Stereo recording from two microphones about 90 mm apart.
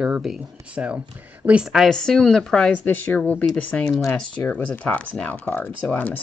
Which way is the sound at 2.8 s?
20° left (ahead or behind).